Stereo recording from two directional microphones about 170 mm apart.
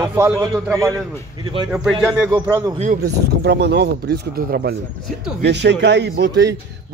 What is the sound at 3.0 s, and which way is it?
Speech, 80° right.